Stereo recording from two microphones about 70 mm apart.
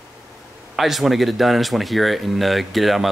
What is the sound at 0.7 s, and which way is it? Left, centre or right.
Speech, centre.